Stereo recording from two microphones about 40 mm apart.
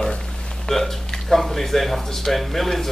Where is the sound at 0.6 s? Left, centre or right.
Centre.